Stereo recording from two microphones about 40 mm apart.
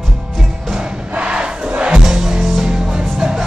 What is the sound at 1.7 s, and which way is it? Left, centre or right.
Music, right.